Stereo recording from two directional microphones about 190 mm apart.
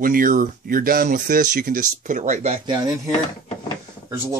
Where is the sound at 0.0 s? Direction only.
50° right (ahead or behind); by 3.0 s 20° right (ahead or behind).